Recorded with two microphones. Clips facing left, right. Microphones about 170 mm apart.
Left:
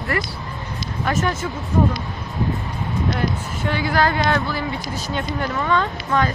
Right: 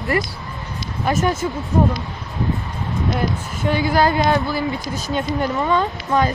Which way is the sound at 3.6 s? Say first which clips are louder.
Right 3 dB; 15° right (ahead or behind).